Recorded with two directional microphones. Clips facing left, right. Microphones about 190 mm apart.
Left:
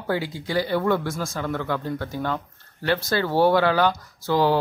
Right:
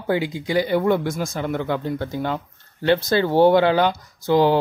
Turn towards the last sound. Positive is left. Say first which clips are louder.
# right 4 dB
turn(degrees=-20)  # may be behind; listen again after turning